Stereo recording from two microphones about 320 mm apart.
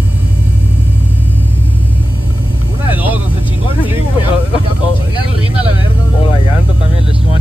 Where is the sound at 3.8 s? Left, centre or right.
Centre.